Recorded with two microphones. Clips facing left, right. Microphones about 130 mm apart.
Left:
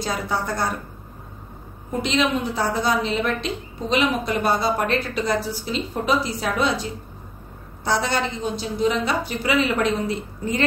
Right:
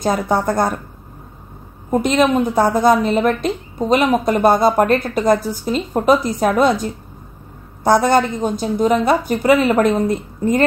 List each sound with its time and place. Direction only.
0.0 s a woman's voice: 50° right (ahead or behind)
1.9 s a woman's voice: 50° right (ahead or behind)